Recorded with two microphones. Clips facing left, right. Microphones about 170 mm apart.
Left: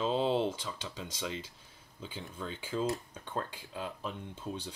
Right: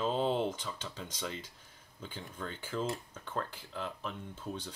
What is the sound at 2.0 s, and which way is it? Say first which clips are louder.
Speech: left 1 dB; 10° left (ahead or behind).